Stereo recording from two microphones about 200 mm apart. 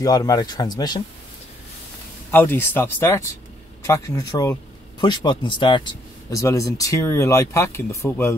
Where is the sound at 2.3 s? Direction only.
10° left (ahead or behind).